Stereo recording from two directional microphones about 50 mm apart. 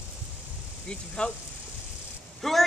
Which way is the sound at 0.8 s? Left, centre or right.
Centre.